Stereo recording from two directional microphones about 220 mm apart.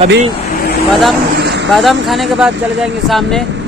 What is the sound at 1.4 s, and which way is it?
Vehicle, 50° right (ahead or behind).